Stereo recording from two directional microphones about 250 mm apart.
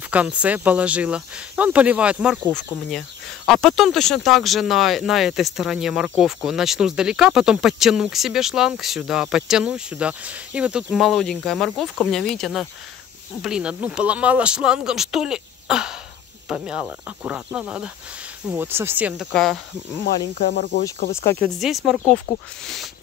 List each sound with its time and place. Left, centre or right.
0.1 s speech: centre
20.3 s speech: left
21.4 s speech: centre